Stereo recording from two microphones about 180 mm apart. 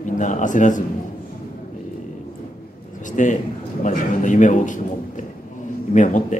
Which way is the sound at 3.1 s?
45° left (ahead or behind).